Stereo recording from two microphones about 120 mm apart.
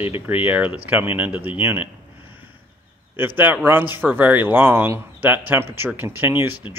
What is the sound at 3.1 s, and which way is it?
Speech, 15° right (ahead or behind).